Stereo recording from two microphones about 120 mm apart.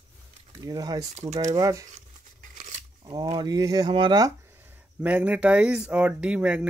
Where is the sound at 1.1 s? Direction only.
65° right (ahead or behind).